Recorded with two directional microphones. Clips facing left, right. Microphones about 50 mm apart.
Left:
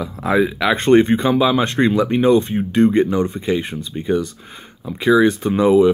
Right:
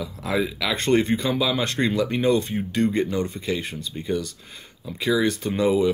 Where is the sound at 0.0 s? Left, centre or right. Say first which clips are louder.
Left 8 dB; left.